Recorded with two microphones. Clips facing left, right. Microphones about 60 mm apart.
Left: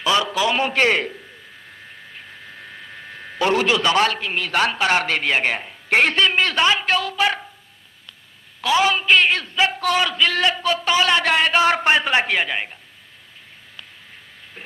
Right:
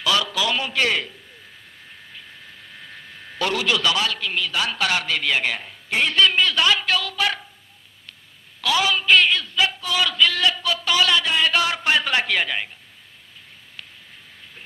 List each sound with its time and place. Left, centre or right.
0.0 s a man's voice: left
3.1 s a sound: left
4.0 s a man's voice: left
4.5 s a woman's voice: left
4.7 s a man's voice: left
5.9 s speech: left
6.1 s speech: left
8.5 s speech: left
9.3 s a man's voice: left; by 12.6 s centre